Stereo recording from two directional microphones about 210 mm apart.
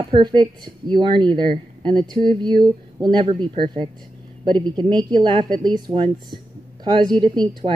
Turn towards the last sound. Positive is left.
turn(degrees=-20)  # may be behind; listen again after turning